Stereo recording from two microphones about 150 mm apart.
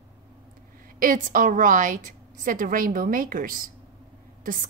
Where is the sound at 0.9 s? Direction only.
65° right (ahead or behind).